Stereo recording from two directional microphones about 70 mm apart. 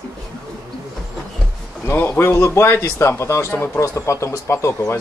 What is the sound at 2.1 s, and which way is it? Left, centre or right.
Speech, left.